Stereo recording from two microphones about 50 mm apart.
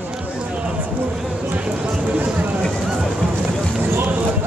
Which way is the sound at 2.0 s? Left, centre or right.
Right.